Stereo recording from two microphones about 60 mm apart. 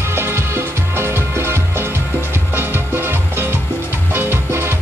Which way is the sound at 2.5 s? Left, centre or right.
Right.